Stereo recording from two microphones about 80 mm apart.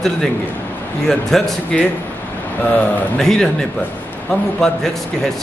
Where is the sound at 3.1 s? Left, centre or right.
Centre.